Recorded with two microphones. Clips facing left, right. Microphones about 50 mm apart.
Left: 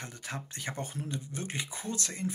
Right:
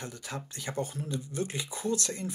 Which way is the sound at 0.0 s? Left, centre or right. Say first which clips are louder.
Right 1 dB; left.